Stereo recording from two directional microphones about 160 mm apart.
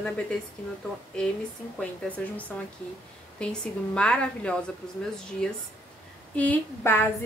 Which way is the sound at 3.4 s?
5° left (ahead or behind).